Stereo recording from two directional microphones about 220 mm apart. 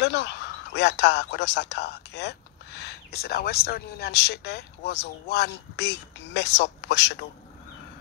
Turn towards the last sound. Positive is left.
turn(degrees=50)  # may be behind; listen again after turning